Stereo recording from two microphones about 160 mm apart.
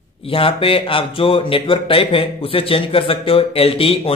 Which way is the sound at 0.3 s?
35° left (ahead or behind).